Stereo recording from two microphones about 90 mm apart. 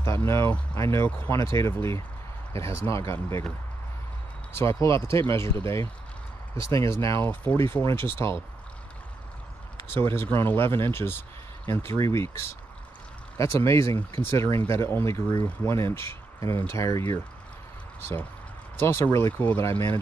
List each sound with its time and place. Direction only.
0.0 s speech: 30° left (ahead or behind)
4.6 s speech: 30° left (ahead or behind)
6.6 s speech: 35° left (ahead or behind)
7.2 s speech: 20° left (ahead or behind)
9.8 s speech: 30° left (ahead or behind)
18.8 s speech: 25° left (ahead or behind)